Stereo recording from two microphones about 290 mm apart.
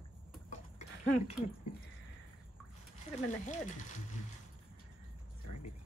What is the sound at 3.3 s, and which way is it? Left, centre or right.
Speech, left.